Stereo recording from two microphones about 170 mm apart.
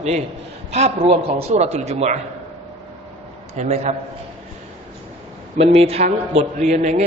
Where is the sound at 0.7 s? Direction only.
40° right (ahead or behind).